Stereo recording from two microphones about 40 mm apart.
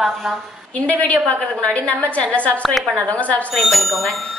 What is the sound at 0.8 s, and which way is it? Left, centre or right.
A woman's voice, left.